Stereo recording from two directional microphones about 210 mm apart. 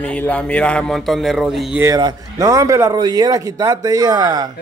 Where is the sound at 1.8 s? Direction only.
15° right (ahead or behind).